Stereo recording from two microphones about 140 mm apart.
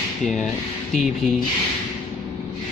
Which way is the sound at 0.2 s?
Centre (ahead or behind).